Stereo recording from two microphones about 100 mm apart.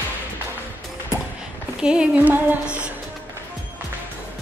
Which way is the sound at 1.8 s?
10° right (ahead or behind).